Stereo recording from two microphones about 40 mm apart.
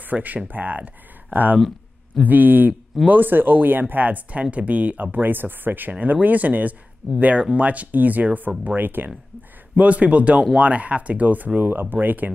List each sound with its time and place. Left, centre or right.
0.0 s speech: right
8.6 s speech: right
9.8 s speech: right
11.7 s speech: right